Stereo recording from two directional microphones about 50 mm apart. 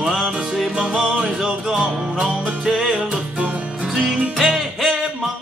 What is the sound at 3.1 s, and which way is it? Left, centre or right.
Music, right.